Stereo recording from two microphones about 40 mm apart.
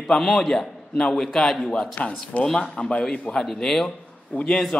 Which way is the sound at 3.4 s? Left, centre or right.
Centre.